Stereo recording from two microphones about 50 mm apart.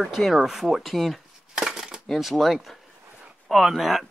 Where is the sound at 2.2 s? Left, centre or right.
Centre.